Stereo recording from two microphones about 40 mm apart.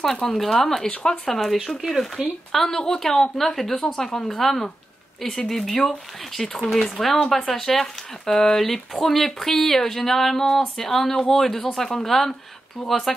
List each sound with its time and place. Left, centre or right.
0.0 s speech: centre
0.8 s speech: left
1.3 s speech: centre
2.2 s speech: right
2.5 s speech: centre